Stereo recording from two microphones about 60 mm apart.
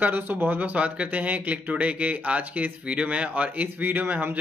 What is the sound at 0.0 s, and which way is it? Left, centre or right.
Speech, right.